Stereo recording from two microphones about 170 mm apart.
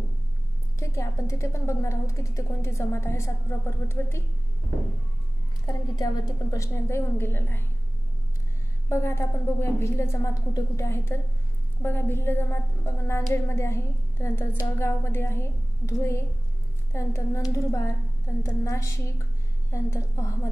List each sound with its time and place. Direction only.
0.7 s a woman's voice: 15° left (ahead or behind)
5.7 s a woman's voice: 20° left (ahead or behind)
8.8 s a woman's voice: 15° left (ahead or behind)